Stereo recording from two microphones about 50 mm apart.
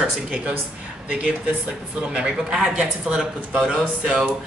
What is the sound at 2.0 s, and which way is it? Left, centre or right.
Speech, centre.